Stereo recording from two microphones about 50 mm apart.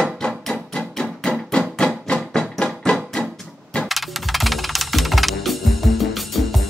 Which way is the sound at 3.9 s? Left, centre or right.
Centre.